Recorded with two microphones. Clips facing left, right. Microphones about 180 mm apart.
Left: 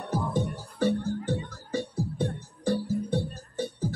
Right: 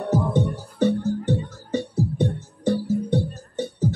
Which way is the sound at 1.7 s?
25° right (ahead or behind).